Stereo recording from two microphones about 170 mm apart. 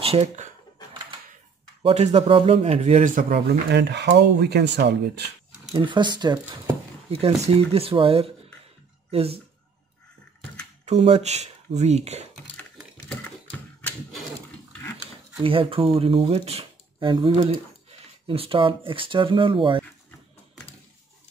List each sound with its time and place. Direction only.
0.0 s a sound: 40° right (ahead or behind)
1.8 s speech: 40° right (ahead or behind)
3.7 s speech: 85° right
5.7 s speech: 25° right (ahead or behind)
10.9 s speech: 40° right (ahead or behind)
14.7 s dog: 10° left (ahead or behind)
15.4 s speech: 30° right (ahead or behind)